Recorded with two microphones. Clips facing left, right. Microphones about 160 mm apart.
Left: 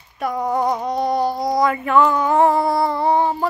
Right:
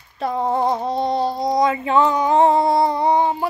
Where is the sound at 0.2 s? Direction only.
25° right (ahead or behind).